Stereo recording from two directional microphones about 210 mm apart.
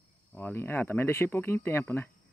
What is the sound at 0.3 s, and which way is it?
Speech, 10° left (ahead or behind).